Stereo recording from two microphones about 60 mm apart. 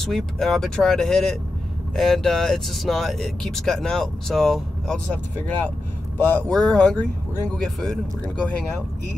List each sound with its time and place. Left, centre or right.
0.0 s speech: centre
6.1 s speech: left
6.5 s speech: centre
6.8 s speech: left
7.6 s speech: centre